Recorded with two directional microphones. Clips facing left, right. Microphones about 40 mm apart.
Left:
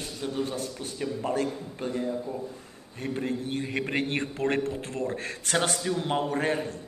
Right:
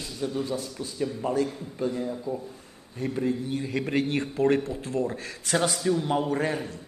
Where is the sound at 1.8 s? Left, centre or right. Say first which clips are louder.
Right 2 dB; left.